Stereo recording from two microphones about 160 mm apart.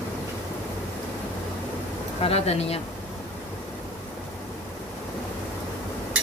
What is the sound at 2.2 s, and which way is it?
Speech, 40° left (ahead or behind).